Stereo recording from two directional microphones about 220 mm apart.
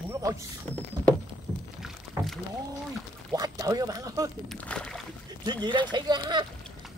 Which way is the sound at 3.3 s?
15° right (ahead or behind).